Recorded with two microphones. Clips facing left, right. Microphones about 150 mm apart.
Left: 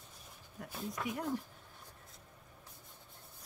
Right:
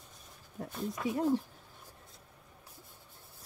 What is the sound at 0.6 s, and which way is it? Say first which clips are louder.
Speech: right 5 dB; 25° right (ahead or behind).